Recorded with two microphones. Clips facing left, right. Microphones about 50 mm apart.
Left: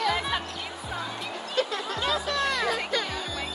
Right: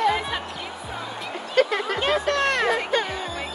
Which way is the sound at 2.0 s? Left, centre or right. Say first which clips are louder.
Right 4 dB; right.